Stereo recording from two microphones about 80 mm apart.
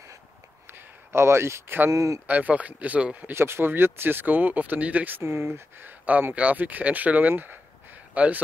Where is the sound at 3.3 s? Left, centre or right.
Right.